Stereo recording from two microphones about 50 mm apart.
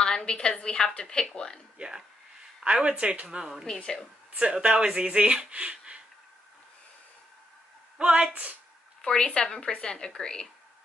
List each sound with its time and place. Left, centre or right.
0.0 s a woman's voice: centre
1.8 s a woman's voice: centre
3.3 s a woman's voice: centre
3.6 s a woman's voice: centre
4.3 s speech: right
8.0 s speech: right
9.0 s a woman's voice: centre